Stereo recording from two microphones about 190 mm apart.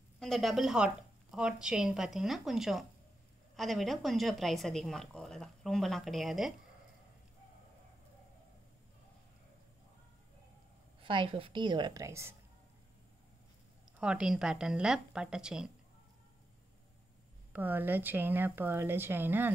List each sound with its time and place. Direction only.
0.2 s a woman's voice: centre (ahead or behind)
11.0 s a woman's voice: 25° right (ahead or behind)
13.9 s a woman's voice: 5° right (ahead or behind)
17.5 s speech: 10° right (ahead or behind)